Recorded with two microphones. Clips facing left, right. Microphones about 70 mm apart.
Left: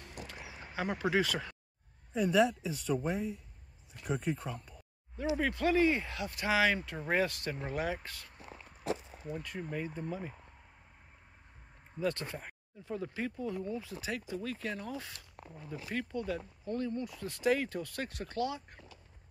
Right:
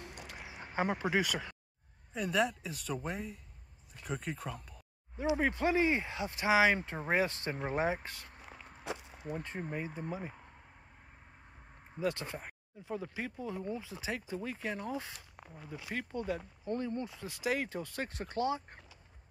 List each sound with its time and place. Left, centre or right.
0.8 s speech: right
1.1 s speech: centre
2.1 s speech: centre
5.1 s speech: centre
6.8 s speech: right
9.4 s speech: right
9.8 s speech: centre
12.0 s speech: centre
13.6 s speech: right
17.2 s speech: centre; by 18.8 s right